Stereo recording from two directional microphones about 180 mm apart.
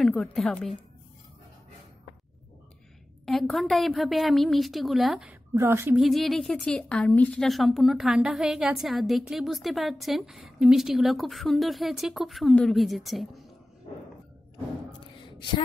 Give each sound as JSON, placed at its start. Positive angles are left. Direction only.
{"t": 0.0, "sound": "a woman's voice", "side_deg": 0}
{"t": 3.3, "sound": "a woman's voice", "side_deg": 0}
{"t": 5.6, "sound": "a woman's voice", "side_deg": -15}
{"t": 5.9, "sound": "a woman's voice", "side_deg": 0}
{"t": 15.2, "sound": "a sound", "side_deg": 25}